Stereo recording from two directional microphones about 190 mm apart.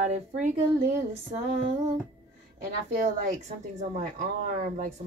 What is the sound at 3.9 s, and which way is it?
Speech, 45° right (ahead or behind).